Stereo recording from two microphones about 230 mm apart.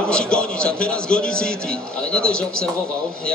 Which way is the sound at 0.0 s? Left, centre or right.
Centre.